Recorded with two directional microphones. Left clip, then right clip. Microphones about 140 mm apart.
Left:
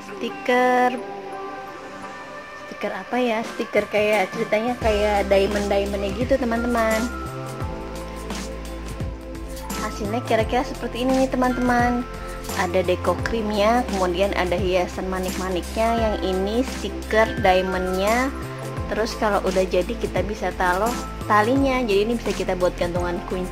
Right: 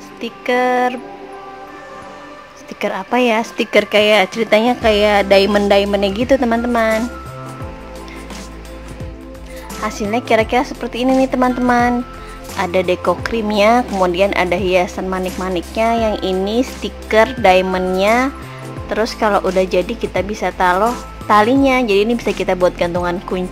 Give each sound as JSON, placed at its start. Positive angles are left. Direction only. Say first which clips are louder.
{"t": 0.2, "sound": "speech", "louder": "right 3 dB", "side_deg": -5}
{"t": 2.8, "sound": "a woman's voice", "louder": "right 8 dB", "side_deg": -30}
{"t": 3.7, "sound": "a woman's voice", "louder": "right 8 dB", "side_deg": -50}
{"t": 6.4, "sound": "speech", "louder": "right 6 dB", "side_deg": -25}
{"t": 9.8, "sound": "speech", "louder": "right 8 dB", "side_deg": -25}